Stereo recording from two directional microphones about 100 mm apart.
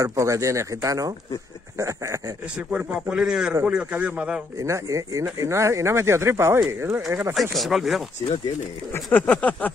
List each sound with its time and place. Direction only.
0.0 s speech: 30° right (ahead or behind)
2.5 s a man's voice: 10° right (ahead or behind)
4.6 s speech: 30° right (ahead or behind)
7.3 s speech: centre (ahead or behind)
8.9 s a sound: 15° left (ahead or behind)